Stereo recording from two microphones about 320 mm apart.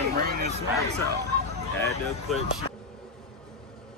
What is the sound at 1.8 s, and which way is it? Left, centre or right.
Speech, centre.